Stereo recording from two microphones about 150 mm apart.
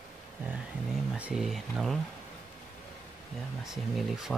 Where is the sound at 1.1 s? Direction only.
5° right (ahead or behind).